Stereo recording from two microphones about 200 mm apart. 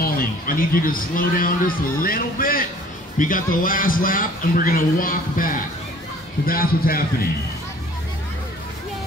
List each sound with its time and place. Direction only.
0.0 s a man's voice: 45° left (ahead or behind)